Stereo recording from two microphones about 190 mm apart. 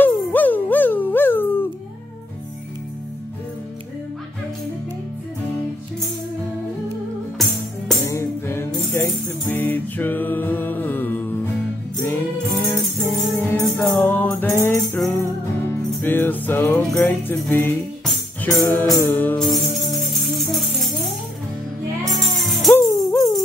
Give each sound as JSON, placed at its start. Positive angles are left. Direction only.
{"t": 0.0, "sound": "a sound", "side_deg": 10}
{"t": 8.1, "sound": "music", "side_deg": 15}
{"t": 22.1, "sound": "music", "side_deg": 0}
{"t": 22.8, "sound": "music", "side_deg": 15}